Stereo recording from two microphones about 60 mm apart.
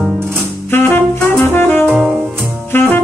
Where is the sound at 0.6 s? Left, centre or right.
Left.